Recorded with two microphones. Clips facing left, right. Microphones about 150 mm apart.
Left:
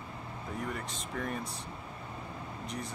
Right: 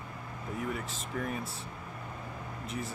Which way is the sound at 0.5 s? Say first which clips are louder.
Right 2 dB; 5° right (ahead or behind).